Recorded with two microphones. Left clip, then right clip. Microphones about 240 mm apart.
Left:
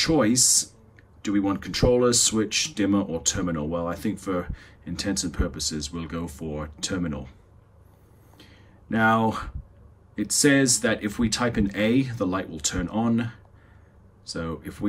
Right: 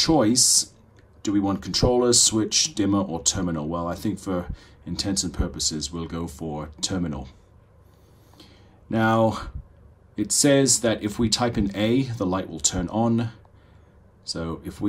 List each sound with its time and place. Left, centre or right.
0.0 s speech: centre
9.2 s speech: centre